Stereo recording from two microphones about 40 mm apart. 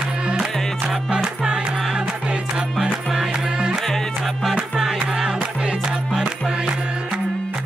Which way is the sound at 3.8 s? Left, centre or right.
Centre.